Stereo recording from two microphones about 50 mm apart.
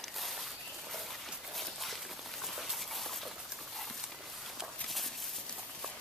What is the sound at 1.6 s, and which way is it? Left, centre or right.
Walk, centre.